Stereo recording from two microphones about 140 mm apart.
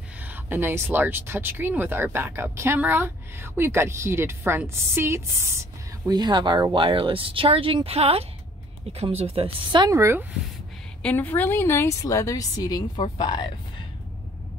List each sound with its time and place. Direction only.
0.2 s speech: 15° right (ahead or behind); by 9.9 s 35° right (ahead or behind)
9.9 s speech: 20° right (ahead or behind)
11.0 s a woman's voice: 10° left (ahead or behind); by 13.5 s 35° left (ahead or behind)